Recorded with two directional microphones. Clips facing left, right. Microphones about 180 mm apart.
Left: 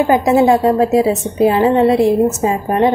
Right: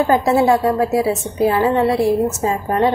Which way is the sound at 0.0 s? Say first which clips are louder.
Left 3 dB; 15° left (ahead or behind).